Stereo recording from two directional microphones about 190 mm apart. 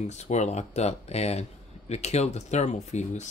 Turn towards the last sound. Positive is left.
turn(degrees=40)  # may be behind; listen again after turning